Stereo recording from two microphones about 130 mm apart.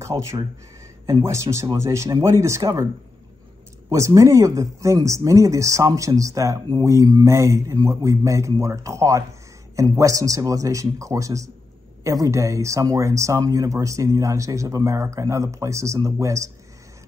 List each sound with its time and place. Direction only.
0.0 s speech: 25° right (ahead or behind)
3.9 s speech: 25° right (ahead or behind)